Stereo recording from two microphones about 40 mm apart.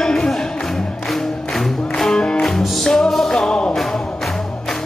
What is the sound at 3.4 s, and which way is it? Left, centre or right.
Music, left.